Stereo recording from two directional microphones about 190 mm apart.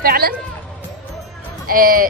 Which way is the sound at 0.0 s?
55° right (ahead or behind).